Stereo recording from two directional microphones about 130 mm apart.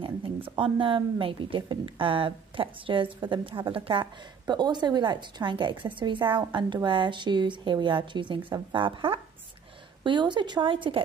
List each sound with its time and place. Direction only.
0.0 s a woman's voice: 40° right (ahead or behind)